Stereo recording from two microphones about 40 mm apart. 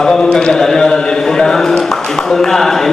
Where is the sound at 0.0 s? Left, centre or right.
Centre.